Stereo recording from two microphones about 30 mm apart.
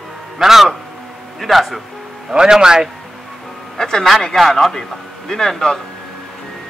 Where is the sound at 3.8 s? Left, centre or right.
Centre.